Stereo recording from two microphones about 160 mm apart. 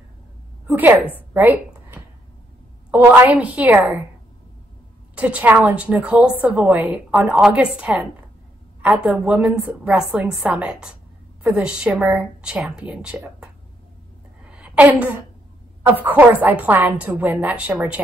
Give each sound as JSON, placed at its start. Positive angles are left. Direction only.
{"t": 0.7, "sound": "a woman's voice", "side_deg": -10}
{"t": 1.3, "sound": "a sound", "side_deg": -10}
{"t": 2.9, "sound": "a woman's voice", "side_deg": -15}
{"t": 5.1, "sound": "a woman's voice", "side_deg": -10}
{"t": 14.4, "sound": "a sound", "side_deg": -5}
{"t": 15.9, "sound": "a woman's voice", "side_deg": -10}